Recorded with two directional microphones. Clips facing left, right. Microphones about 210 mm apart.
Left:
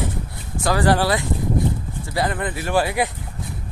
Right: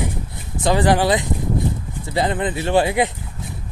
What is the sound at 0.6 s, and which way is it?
Speech, 20° right (ahead or behind).